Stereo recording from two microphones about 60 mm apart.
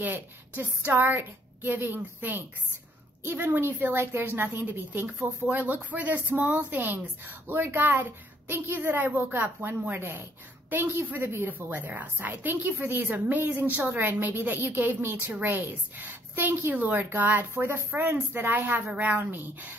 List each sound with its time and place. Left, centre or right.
0.0 s a woman's voice: right
17.6 s a woman's voice: right